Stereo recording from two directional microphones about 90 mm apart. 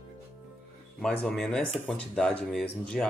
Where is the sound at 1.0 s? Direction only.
5° left (ahead or behind).